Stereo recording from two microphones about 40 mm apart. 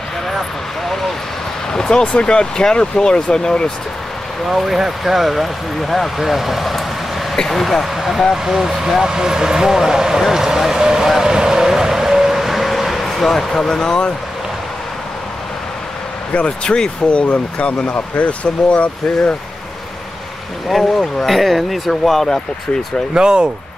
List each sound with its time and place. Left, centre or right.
0.3 s vehicle: centre
1.7 s speech: centre
4.5 s speech: centre
9.0 s speech: centre
11.2 s vehicle: centre
13.7 s speech: centre
16.3 s speech: left
20.6 s speech: centre
23.1 s speech: right